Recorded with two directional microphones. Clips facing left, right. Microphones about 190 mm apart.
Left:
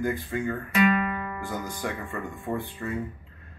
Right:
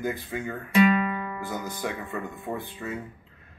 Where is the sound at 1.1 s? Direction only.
10° right (ahead or behind).